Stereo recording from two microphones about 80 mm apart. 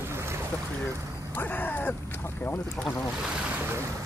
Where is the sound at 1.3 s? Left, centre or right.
Left.